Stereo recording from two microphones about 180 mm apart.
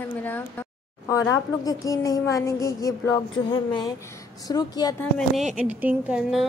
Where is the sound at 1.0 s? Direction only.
15° left (ahead or behind).